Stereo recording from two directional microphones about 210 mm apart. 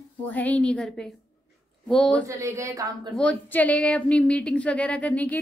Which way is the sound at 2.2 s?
15° right (ahead or behind).